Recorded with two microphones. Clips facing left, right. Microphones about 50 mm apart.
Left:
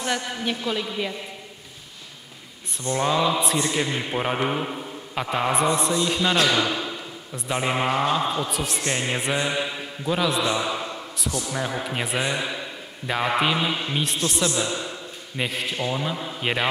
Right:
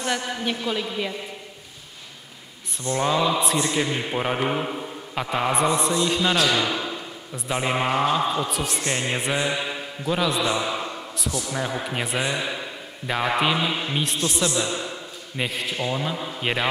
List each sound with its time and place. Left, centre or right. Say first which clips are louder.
0.0 s a man's voice: right 1 dB; centre
2.9 s a man's voice: even; centre
10.4 s a sound: even; centre
11.5 s a man's voice: right 1 dB; centre